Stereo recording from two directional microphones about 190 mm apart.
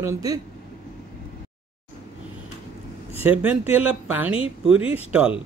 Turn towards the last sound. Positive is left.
turn(degrees=-10)  # may be behind; listen again after turning